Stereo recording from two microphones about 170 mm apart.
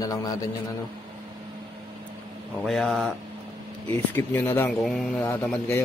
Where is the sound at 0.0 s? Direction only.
20° left (ahead or behind).